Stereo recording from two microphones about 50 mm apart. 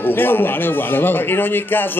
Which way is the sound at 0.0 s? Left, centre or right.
Left.